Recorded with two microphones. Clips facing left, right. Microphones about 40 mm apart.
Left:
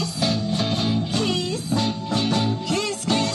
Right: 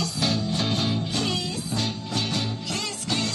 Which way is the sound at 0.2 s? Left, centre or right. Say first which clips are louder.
Left 3 dB; centre.